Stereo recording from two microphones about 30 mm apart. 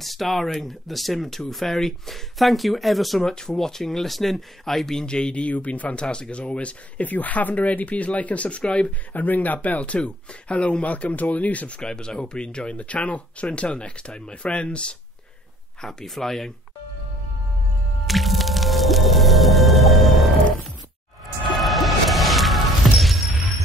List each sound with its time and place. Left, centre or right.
0.0 s speech: centre
3.2 s speech: centre
5.0 s speech: left
5.3 s speech: left
6.0 s speech: left
7.0 s speech: left
9.1 s speech: left
9.8 s speech: left
11.8 s speech: left
12.7 s speech: left
15.8 s speech: centre
18.0 s music: centre
21.6 s music: centre